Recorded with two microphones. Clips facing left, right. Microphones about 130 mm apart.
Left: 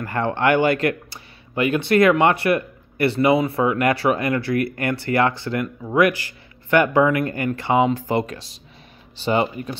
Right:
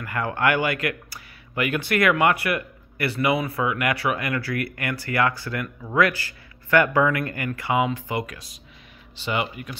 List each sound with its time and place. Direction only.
0.0 s speech: 30° left (ahead or behind)